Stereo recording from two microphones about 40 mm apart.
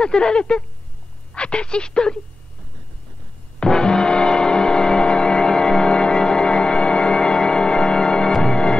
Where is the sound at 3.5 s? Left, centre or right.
Centre.